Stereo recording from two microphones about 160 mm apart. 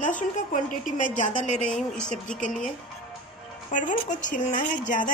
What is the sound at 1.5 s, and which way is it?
Speech, 5° left (ahead or behind).